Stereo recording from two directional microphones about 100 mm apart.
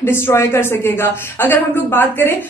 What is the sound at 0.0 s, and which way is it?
A woman's voice, 25° left (ahead or behind).